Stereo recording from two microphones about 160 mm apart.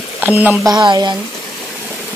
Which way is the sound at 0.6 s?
25° right (ahead or behind).